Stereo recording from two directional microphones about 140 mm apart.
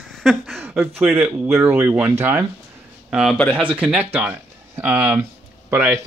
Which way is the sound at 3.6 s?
10° right (ahead or behind).